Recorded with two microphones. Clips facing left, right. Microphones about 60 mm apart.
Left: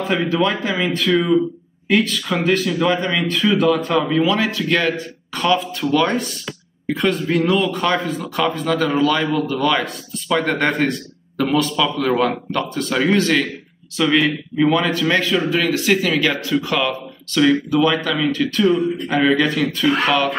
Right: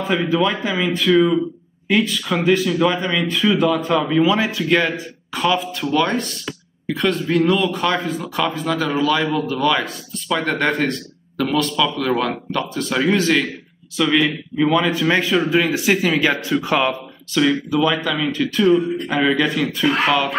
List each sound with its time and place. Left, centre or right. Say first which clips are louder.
0.0 s speech: even; centre
4.2 s speech: right 1 dB; centre
9.3 s speech: left 1 dB; centre
9.6 s speech: even; centre; by 16.9 s right
17.3 s speech: left 2 dB; centre